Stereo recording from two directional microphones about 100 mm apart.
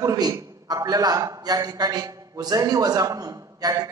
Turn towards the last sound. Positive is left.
turn(degrees=-35)  # may be behind; listen again after turning